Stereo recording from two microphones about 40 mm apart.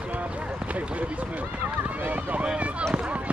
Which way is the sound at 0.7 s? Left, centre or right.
Right.